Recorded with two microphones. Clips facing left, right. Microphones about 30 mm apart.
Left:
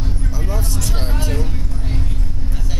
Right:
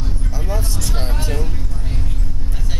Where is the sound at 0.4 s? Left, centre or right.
Centre.